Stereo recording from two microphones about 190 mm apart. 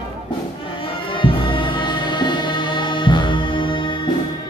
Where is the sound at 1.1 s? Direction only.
25° left (ahead or behind).